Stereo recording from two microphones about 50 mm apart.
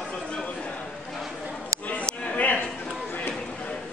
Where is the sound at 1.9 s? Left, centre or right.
Left.